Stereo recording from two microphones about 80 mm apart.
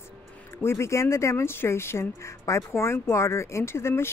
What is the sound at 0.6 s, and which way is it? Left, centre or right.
Speech, left.